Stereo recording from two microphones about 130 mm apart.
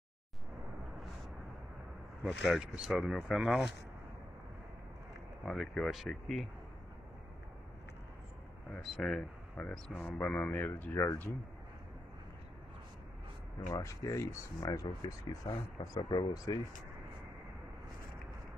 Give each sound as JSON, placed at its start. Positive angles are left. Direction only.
{"t": 2.2, "sound": "speech", "side_deg": -5}
{"t": 5.4, "sound": "speech", "side_deg": 5}
{"t": 8.9, "sound": "speech", "side_deg": 0}
{"t": 9.6, "sound": "speech", "side_deg": 10}
{"t": 13.7, "sound": "speech", "side_deg": 25}
{"t": 16.0, "sound": "speech", "side_deg": 35}